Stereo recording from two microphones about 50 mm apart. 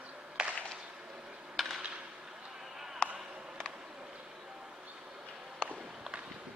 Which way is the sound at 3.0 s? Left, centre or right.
Centre.